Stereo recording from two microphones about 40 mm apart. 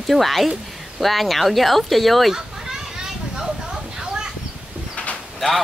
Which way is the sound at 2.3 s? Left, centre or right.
Centre.